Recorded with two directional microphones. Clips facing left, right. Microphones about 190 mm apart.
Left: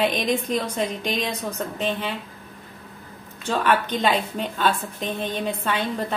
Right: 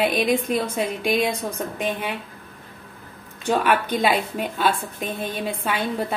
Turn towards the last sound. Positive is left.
turn(degrees=-10)  # may be behind; listen again after turning